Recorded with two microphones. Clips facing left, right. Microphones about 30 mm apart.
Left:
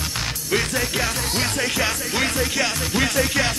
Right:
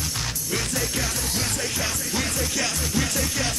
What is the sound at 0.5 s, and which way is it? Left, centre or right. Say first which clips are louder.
Music: left 6 dB; left.